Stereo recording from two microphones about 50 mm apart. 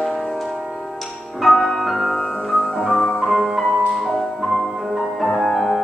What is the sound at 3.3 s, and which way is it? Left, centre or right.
Music, centre.